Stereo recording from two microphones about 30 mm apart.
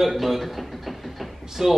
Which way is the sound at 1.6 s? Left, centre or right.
Centre.